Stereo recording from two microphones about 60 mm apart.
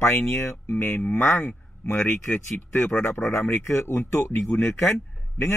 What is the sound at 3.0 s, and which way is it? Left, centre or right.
A man's voice, left.